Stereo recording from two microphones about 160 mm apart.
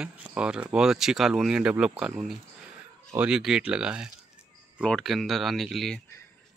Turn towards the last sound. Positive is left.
turn(degrees=0)  # may be behind; listen again after turning